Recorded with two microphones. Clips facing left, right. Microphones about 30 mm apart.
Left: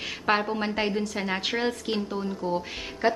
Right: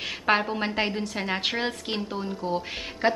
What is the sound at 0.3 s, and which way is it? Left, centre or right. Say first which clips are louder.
A woman's voice: right 1 dB; centre.